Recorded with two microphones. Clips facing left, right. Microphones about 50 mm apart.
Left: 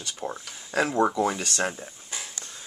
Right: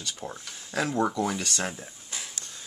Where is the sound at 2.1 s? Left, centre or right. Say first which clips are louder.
Even; left.